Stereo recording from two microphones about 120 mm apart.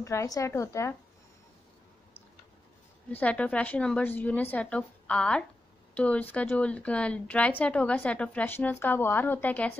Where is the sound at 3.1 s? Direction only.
10° left (ahead or behind).